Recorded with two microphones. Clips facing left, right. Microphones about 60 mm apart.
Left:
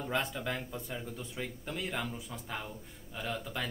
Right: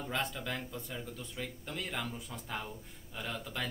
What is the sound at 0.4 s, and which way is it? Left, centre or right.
Speech, centre.